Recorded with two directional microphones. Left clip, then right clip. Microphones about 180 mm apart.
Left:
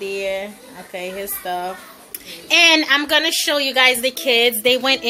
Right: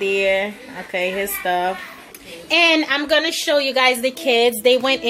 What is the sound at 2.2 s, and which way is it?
A woman's voice, centre (ahead or behind).